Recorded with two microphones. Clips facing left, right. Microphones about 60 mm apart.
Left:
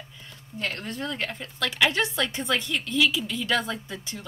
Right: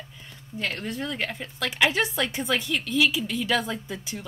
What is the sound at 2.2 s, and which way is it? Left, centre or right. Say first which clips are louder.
A woman's voice: even; centre.